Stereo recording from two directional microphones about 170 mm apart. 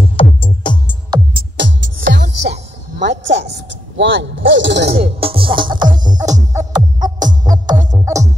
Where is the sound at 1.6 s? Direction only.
90° right.